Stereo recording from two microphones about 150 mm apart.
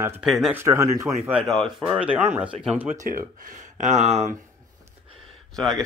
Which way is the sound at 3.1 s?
65° right (ahead or behind).